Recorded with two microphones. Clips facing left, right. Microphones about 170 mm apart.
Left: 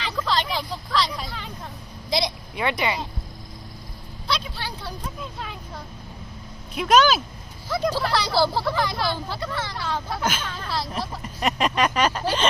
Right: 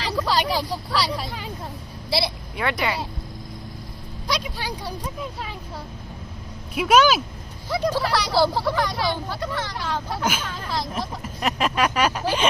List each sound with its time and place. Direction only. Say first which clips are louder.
0.1 s vehicle: right 3 dB; 10° right (ahead or behind)
0.8 s speech: right 1 dB; 10° right (ahead or behind)
2.0 s speech: even; 20° left (ahead or behind)
2.5 s speech: even; centre (ahead or behind)
4.3 s speech: right 2 dB; 15° right (ahead or behind)
6.7 s speech: right 1 dB; 10° right (ahead or behind)